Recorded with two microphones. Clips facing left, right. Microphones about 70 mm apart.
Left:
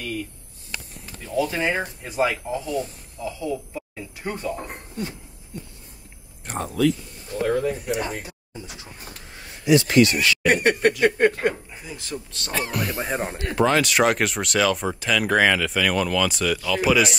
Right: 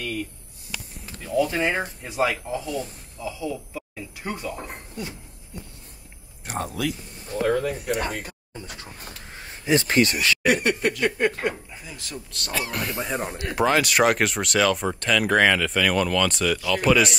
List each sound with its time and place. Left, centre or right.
0.0 s a sound: right
1.3 s speech: centre
6.4 s speech: centre
7.4 s speech: right
9.4 s speech: right
10.4 s speech: left
11.7 s speech: left
13.0 s speech: left
13.4 s speech: centre